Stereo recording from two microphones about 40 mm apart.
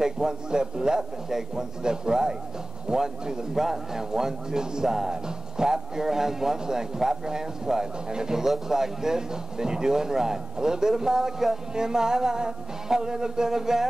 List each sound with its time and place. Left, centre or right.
0.0 s a man's voice: centre